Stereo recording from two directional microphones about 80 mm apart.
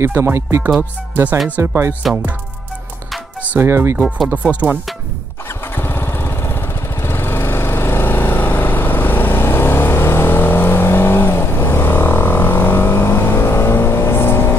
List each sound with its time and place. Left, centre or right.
0.0 s speech: right
3.5 s speech: right
4.3 s speech: centre
5.8 s lawn mower: left